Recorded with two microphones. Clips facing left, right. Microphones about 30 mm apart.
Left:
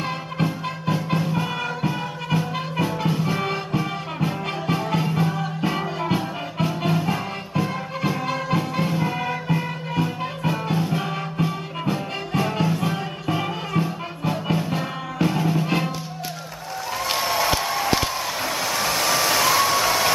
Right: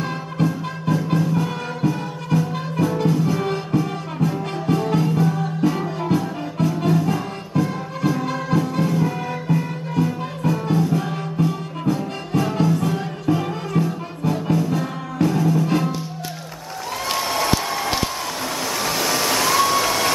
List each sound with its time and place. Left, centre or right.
0.0 s music: left
8.2 s music: centre
8.5 s music: left
17.1 s a sound: centre
18.6 s vehicle: centre